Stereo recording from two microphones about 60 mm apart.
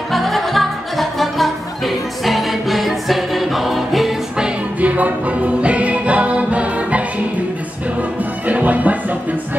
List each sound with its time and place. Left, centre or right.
0.1 s music: centre
4.7 s music: right
8.5 s music: right